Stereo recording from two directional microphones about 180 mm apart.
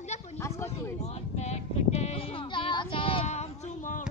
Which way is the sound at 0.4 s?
15° left (ahead or behind).